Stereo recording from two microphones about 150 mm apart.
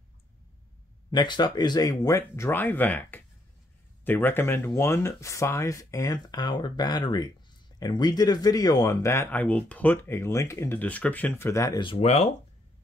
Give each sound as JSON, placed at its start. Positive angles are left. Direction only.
{"t": 1.1, "sound": "speech", "side_deg": 30}